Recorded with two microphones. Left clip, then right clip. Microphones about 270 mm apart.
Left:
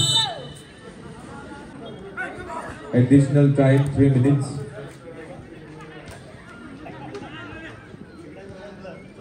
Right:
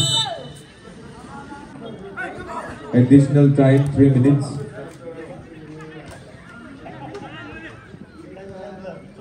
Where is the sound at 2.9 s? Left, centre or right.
Right.